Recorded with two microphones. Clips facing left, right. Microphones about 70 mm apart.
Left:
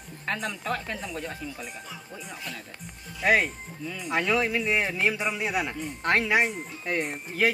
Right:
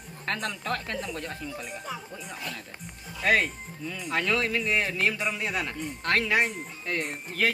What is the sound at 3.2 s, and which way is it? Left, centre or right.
A man's voice, centre.